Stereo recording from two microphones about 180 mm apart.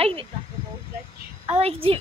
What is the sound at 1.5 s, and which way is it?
Speech, 30° right (ahead or behind).